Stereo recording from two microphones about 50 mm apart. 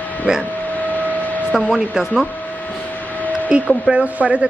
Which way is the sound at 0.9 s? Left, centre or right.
Left.